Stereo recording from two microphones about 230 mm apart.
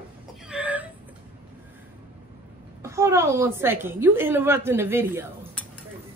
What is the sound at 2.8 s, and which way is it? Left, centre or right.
A woman's voice, centre.